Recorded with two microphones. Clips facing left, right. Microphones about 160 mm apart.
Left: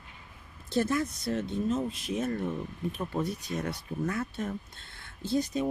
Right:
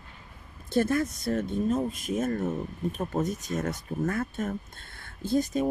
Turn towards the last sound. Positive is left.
turn(degrees=-50)  # may be behind; listen again after turning